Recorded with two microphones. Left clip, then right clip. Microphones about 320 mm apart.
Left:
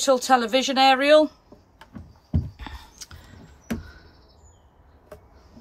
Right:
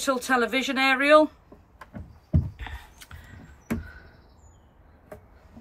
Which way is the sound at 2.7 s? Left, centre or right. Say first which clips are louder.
Left 2 dB; centre.